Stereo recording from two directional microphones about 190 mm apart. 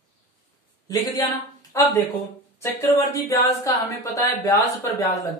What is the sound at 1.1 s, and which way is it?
Speech, 15° left (ahead or behind).